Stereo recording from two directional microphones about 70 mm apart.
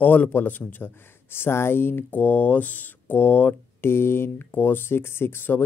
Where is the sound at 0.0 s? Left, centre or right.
Left.